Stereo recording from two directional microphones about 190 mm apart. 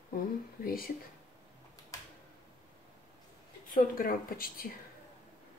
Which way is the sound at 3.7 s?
50° left (ahead or behind).